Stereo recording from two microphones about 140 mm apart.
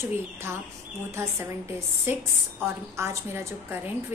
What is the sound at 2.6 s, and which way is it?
A woman's voice, 20° right (ahead or behind).